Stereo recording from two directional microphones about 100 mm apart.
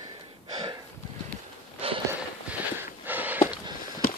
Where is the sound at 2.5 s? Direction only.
20° right (ahead or behind).